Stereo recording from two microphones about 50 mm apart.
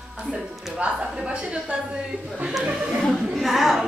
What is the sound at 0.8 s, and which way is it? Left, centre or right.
Speech, right.